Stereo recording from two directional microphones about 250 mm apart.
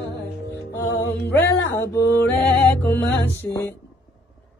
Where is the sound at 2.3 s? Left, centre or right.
Centre.